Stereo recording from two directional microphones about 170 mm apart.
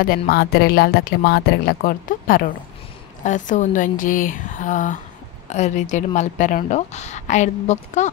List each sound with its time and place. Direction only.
0.3 s a woman's voice: 65° left (ahead or behind); by 8.1 s 45° left (ahead or behind)